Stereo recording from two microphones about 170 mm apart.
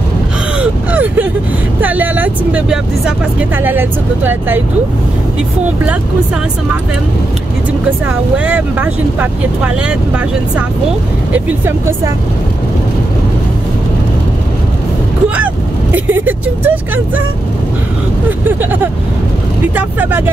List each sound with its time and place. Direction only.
0.6 s gasp: 10° right (ahead or behind)
1.8 s speech: 10° right (ahead or behind)
8.5 s speech: 10° right (ahead or behind)
11.3 s speech: 10° right (ahead or behind)
15.2 s speech: 10° right (ahead or behind)
18.6 s speech: 10° right (ahead or behind)